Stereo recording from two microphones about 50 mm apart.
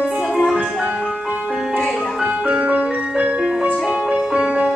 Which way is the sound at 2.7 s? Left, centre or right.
Right.